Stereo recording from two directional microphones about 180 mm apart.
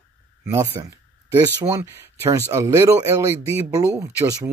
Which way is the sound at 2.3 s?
15° right (ahead or behind).